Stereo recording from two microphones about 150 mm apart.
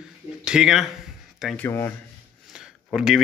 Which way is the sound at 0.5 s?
5° right (ahead or behind).